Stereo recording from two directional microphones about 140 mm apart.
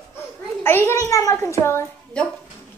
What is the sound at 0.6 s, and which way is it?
A child's voice, 15° left (ahead or behind).